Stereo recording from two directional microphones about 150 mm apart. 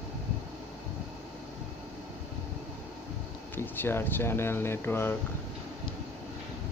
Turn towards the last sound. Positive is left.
turn(degrees=15)  # may be behind; listen again after turning